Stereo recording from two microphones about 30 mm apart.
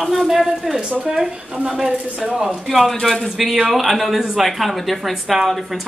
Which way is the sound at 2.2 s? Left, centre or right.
Right.